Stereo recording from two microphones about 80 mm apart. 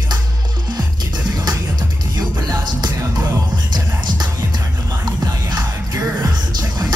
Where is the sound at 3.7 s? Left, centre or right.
Right.